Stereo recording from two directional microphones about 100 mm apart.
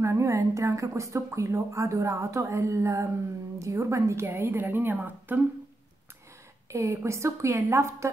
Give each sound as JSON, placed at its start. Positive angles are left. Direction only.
{"t": 0.0, "sound": "a woman's voice", "side_deg": -30}
{"t": 6.7, "sound": "a woman's voice", "side_deg": -30}